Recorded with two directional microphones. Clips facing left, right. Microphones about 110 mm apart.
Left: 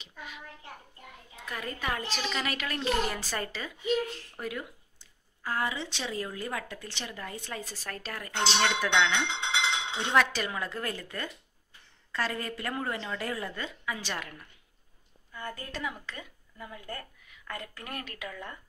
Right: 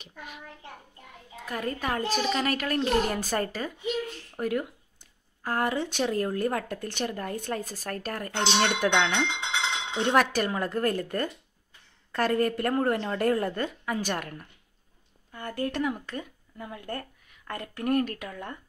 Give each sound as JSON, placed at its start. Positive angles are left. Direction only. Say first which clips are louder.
{"t": 0.0, "sound": "child singing", "louder": "right 1 dB", "side_deg": -50}
{"t": 1.4, "sound": "speech", "louder": "right 5 dB", "side_deg": -40}
{"t": 15.3, "sound": "speech", "louder": "right 8 dB", "side_deg": -65}